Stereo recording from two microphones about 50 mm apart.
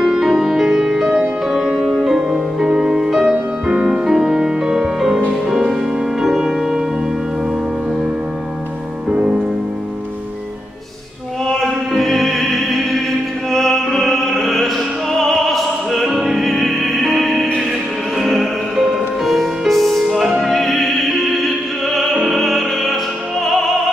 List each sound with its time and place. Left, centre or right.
0.2 s music: centre
9.1 s music: right
11.4 s music: centre
15.1 s opera: centre
18.2 s music: centre
20.1 s opera: centre
23.4 s music: centre